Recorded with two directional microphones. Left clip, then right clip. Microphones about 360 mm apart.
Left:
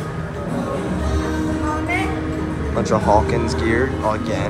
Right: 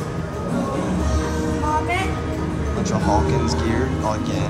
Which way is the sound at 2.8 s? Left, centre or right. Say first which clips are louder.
Left 5 dB; centre.